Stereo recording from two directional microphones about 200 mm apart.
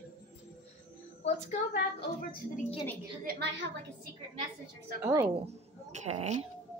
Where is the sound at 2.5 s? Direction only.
30° left (ahead or behind).